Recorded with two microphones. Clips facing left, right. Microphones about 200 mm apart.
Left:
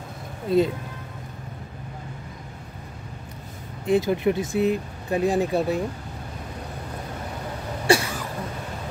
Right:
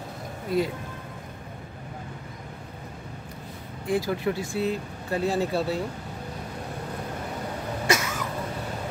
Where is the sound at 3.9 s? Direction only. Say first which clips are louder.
Left 5 dB; 20° left (ahead or behind).